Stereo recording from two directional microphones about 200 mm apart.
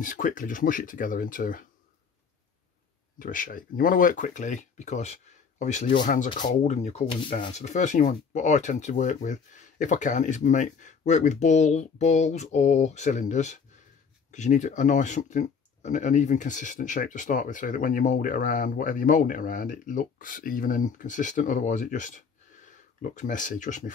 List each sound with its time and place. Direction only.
0.0 s speech: 40° left (ahead or behind)
3.2 s speech: 40° left (ahead or behind)